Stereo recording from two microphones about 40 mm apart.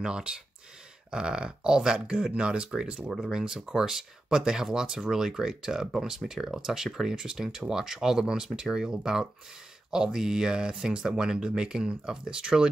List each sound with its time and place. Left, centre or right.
0.0 s speech: right